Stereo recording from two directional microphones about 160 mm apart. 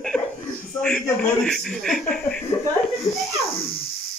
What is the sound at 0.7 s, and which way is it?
A man's voice, 5° left (ahead or behind).